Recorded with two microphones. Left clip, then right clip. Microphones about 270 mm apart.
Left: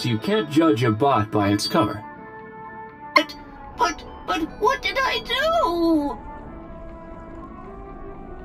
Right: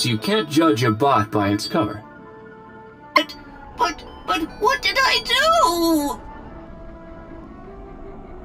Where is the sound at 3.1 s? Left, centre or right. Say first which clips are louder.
Even; centre; by 6.2 s right.